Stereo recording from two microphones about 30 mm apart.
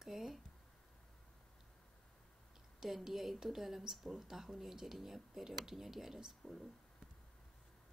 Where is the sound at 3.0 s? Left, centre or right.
Centre.